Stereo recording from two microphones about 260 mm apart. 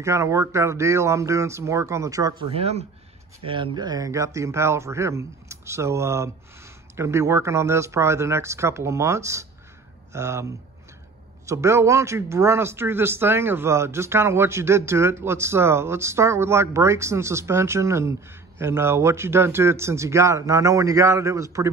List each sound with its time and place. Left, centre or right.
0.0 s speech: centre